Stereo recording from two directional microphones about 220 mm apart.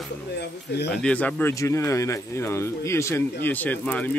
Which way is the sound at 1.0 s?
5° left (ahead or behind).